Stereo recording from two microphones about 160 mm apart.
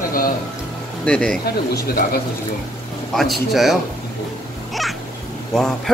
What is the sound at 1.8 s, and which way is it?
Speech, 70° left (ahead or behind).